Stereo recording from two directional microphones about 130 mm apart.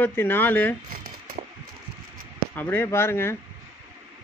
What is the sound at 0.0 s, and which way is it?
Speech, 15° left (ahead or behind).